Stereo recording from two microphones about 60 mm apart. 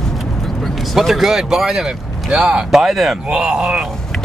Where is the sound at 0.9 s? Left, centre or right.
Centre.